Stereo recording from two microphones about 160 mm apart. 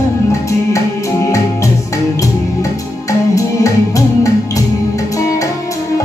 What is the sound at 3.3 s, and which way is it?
Music, 20° left (ahead or behind).